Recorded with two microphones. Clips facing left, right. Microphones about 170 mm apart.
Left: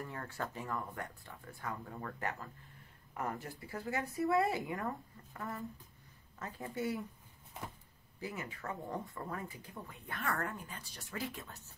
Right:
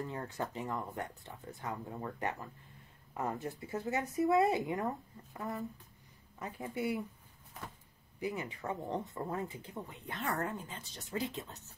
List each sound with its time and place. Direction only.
0.0 s a woman's voice: 20° right (ahead or behind)
8.2 s speech: 15° right (ahead or behind)